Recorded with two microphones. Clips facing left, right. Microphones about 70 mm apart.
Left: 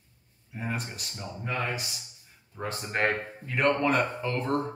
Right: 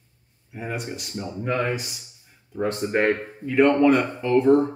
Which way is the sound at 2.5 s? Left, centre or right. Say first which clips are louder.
Right 9 dB; centre.